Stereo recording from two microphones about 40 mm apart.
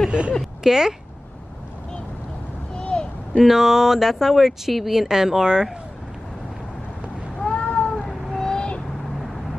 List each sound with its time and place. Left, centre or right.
0.7 s speech: centre
2.7 s a sound: left
3.3 s speech: centre
7.4 s cat: left
8.4 s owl: centre